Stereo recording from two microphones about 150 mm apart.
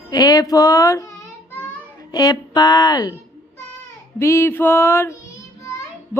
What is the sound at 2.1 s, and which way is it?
Speech, 25° left (ahead or behind).